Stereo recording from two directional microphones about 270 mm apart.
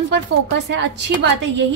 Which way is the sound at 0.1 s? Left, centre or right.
Right.